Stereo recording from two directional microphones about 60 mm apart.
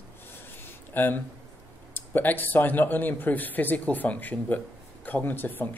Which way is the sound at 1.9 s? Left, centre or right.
Left.